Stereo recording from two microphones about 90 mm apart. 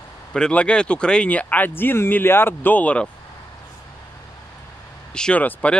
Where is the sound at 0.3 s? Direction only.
10° left (ahead or behind).